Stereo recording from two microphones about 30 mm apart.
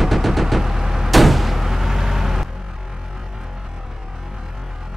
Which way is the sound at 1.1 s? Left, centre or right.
Centre.